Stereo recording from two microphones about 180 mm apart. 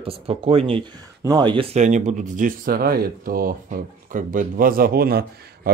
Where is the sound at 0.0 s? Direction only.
30° right (ahead or behind).